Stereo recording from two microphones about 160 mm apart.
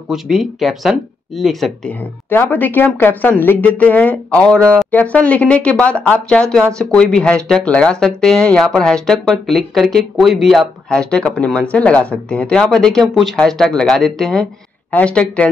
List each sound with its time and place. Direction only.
0.1 s speech: centre (ahead or behind)
2.2 s speech: 15° left (ahead or behind)